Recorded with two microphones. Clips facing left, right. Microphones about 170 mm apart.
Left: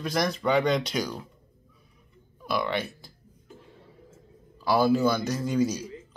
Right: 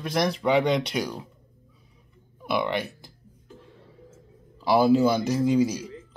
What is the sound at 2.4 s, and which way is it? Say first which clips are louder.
Speech: right 2 dB; 20° right (ahead or behind).